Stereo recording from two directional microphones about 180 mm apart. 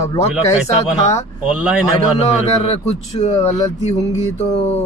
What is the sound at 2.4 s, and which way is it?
Speech, 35° left (ahead or behind).